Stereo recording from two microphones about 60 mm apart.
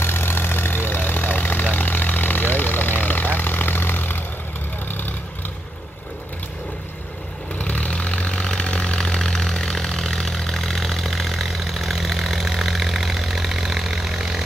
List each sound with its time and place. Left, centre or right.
0.0 s vehicle: left
7.5 s vehicle: left; by 14.4 s centre